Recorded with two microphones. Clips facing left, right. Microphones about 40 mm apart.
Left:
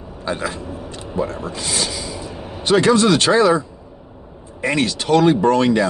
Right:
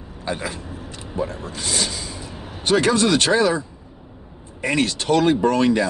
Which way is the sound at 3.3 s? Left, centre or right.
Left.